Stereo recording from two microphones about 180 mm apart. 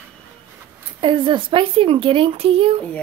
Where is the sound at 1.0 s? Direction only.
25° right (ahead or behind).